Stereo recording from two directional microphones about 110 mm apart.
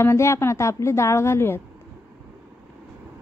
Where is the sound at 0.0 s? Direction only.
25° left (ahead or behind).